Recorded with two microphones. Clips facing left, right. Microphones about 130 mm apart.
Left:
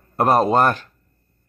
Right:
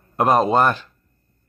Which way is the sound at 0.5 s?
45° left (ahead or behind).